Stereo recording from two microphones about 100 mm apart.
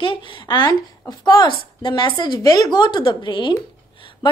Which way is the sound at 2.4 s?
35° left (ahead or behind).